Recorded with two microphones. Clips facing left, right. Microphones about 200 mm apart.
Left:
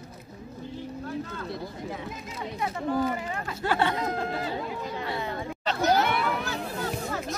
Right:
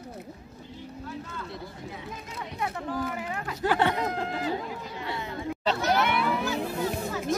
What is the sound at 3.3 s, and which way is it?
Speech, 10° right (ahead or behind).